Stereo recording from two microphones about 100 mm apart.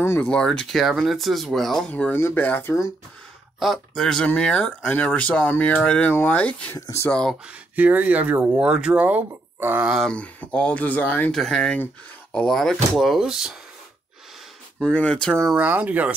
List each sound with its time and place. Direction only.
0.0 s speech: 25° left (ahead or behind)
0.3 s speech: 5° left (ahead or behind)
1.9 s speech: 15° left (ahead or behind)
3.5 s speech: centre (ahead or behind)
7.4 s speech: 15° right (ahead or behind)
10.0 s speech: 15° left (ahead or behind)
11.3 s speech: 5° left (ahead or behind)
12.4 s speech: 5° left (ahead or behind)
14.8 s speech: 10° left (ahead or behind)
15.5 s speech: 15° right (ahead or behind)